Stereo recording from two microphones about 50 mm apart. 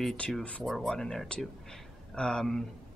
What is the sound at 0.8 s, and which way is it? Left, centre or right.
Speech, centre.